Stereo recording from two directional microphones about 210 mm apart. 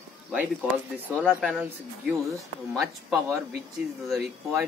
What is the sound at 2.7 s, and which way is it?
Speech, centre (ahead or behind).